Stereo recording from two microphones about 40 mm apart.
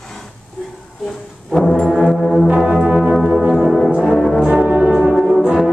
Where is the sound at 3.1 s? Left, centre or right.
Centre.